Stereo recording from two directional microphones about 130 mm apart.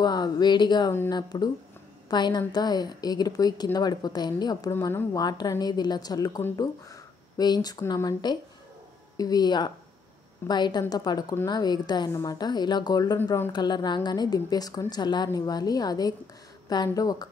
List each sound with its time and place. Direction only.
0.0 s a woman's voice: 30° left (ahead or behind)
4.7 s a woman's voice: 15° left (ahead or behind)
5.1 s a woman's voice: 30° left (ahead or behind)